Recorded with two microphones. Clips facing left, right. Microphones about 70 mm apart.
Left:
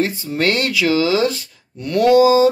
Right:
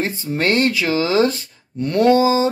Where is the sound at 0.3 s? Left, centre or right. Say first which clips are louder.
Right 4 dB; right.